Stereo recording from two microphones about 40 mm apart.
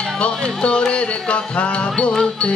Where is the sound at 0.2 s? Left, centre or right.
Left.